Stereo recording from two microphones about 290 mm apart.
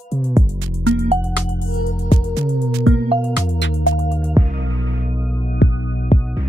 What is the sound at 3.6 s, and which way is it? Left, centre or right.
Music, left.